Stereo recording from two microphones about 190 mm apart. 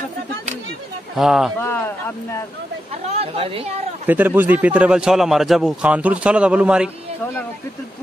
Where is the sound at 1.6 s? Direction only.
10° left (ahead or behind).